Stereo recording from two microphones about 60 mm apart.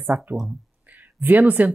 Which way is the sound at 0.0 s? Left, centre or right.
Right.